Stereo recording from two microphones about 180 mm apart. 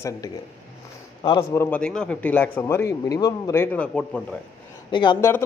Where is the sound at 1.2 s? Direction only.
25° left (ahead or behind).